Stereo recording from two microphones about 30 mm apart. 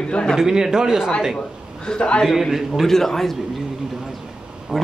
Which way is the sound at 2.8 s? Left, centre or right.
Centre.